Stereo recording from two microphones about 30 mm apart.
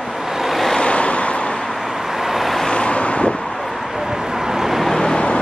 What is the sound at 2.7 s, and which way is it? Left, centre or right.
Vehicle, left.